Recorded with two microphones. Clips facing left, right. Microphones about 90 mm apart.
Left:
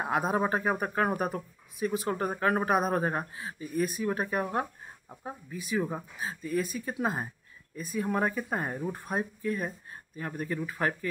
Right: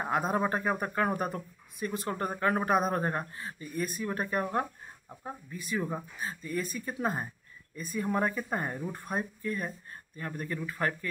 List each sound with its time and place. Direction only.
0.0 s speech: 5° left (ahead or behind)